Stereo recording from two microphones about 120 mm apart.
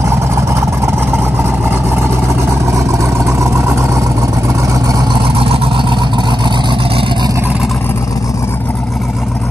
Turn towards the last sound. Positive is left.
turn(degrees=-5)  # may be behind; listen again after turning